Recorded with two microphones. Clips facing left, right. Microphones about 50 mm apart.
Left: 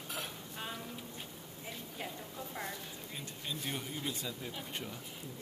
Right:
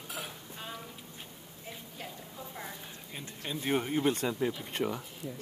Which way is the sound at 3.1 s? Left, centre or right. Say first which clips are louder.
Right 5 dB; right.